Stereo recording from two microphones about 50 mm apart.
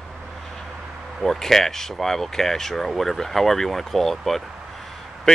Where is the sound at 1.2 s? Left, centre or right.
Centre.